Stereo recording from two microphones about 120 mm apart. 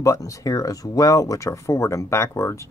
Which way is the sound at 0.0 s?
25° left (ahead or behind).